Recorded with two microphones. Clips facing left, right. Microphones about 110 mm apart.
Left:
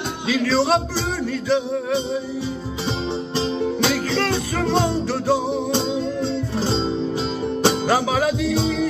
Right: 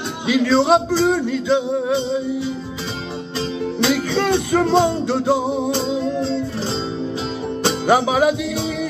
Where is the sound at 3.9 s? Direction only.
20° right (ahead or behind).